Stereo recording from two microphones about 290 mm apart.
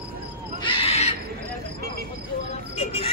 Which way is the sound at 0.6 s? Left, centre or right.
Centre.